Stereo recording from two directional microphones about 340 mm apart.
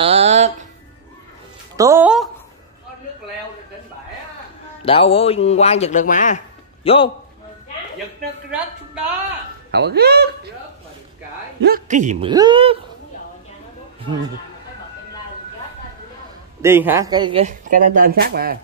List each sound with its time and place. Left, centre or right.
0.0 s music: centre
1.8 s a sound: centre
4.8 s speech: centre
9.7 s speech: right
11.6 s speech: right
16.6 s speech: centre; by 18.6 s right